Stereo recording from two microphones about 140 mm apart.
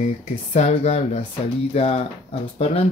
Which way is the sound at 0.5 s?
55° left (ahead or behind).